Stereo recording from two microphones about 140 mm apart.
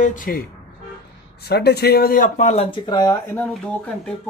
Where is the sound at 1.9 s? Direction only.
90° left; by 2.7 s 55° left (ahead or behind).